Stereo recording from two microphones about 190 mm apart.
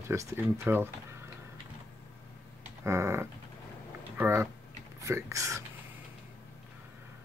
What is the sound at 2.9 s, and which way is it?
Speech, 15° right (ahead or behind).